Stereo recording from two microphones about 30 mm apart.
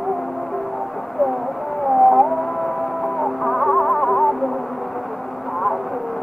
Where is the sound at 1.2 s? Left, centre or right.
Left.